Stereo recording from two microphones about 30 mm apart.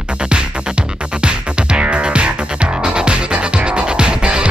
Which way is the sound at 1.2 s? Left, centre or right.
Right.